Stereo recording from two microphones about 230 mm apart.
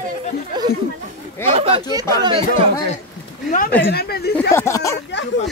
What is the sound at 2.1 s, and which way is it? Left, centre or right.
Speech, centre.